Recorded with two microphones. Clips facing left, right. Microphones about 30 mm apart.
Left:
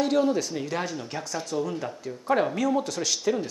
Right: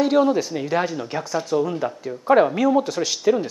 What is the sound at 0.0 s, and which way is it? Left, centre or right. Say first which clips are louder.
Speech: right 5 dB; centre.